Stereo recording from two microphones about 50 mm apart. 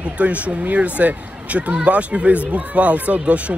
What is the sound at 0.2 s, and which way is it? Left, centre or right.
Speech, right.